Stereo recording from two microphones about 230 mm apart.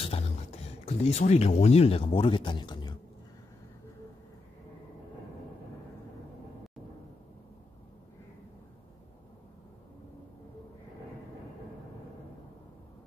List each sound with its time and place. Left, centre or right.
0.8 s speech: left